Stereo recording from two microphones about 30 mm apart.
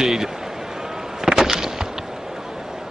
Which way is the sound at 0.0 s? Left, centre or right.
Centre.